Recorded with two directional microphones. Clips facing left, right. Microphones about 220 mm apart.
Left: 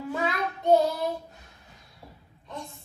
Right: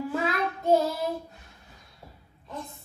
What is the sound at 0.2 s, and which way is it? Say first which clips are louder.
Child singing: right 1 dB; centre (ahead or behind).